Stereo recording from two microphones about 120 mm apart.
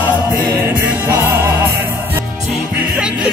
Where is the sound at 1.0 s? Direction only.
20° right (ahead or behind).